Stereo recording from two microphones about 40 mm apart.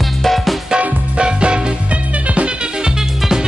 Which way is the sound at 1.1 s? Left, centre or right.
Right.